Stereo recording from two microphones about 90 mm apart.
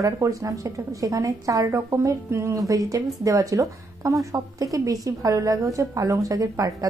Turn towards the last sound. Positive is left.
turn(degrees=-40)  # may be behind; listen again after turning